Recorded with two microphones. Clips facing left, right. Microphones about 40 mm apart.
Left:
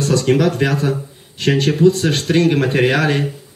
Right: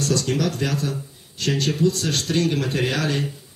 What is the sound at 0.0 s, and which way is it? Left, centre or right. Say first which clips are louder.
Speech: left 7 dB; left.